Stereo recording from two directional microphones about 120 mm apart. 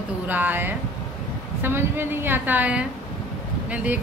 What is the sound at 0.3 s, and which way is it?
A woman's voice, 15° right (ahead or behind).